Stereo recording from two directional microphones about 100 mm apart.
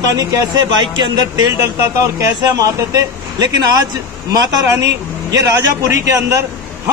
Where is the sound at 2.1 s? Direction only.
35° right (ahead or behind).